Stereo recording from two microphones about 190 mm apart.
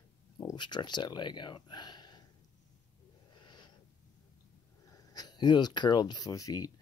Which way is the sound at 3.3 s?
25° left (ahead or behind).